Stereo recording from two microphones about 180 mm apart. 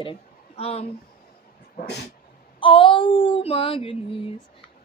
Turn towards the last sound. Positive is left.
turn(degrees=30)  # may be behind; listen again after turning